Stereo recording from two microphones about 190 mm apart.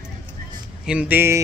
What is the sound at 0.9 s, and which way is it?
Speech, 10° right (ahead or behind).